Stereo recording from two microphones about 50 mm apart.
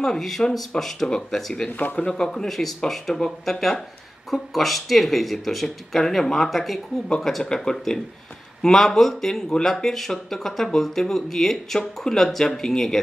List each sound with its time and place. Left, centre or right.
0.0 s speech: centre
1.7 s speech: left
2.0 s speech: centre